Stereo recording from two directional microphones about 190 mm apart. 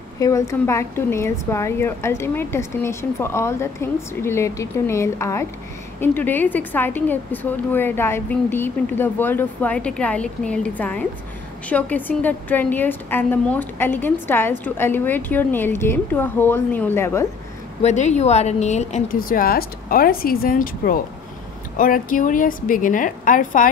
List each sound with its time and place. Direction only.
0.2 s a woman's voice: 15° left (ahead or behind)
17.8 s a woman's voice: 35° left (ahead or behind)